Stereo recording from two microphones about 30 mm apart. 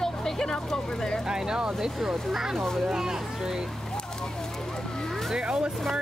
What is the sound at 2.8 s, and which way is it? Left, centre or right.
Speech, centre.